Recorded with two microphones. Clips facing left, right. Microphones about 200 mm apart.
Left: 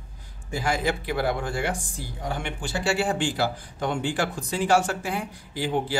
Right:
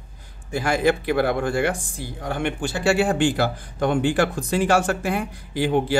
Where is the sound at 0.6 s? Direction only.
60° right (ahead or behind).